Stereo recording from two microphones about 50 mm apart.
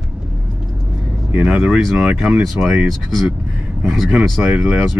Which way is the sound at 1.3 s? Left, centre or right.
Right.